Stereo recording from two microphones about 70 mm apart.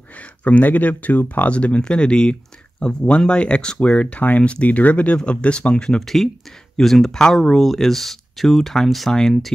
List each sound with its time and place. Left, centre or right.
0.2 s speech: left